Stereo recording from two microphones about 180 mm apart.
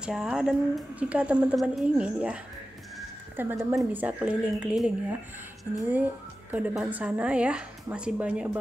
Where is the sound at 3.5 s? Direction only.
5° right (ahead or behind).